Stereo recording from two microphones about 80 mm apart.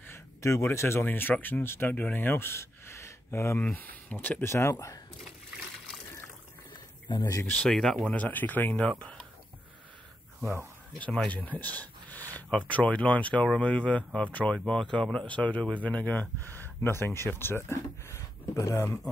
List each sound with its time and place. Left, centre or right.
0.1 s a sound: left
1.0 s speech: left
3.6 s speech: centre
4.5 s speech: left
7.2 s speech: left
7.4 s speech: centre
7.7 s speech: centre
8.1 s speech: centre
11.2 s speech: centre; by 18.9 s left